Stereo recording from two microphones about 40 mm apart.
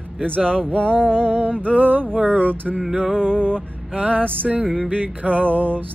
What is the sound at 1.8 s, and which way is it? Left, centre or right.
Music, right.